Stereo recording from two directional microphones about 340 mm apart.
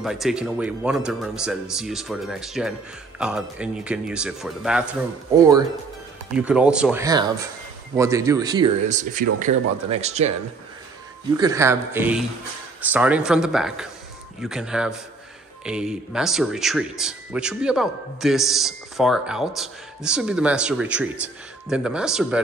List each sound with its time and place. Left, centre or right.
0.0 s speech: centre
11.3 s speech: centre